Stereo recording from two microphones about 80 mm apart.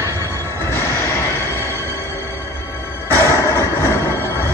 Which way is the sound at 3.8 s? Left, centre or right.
Left.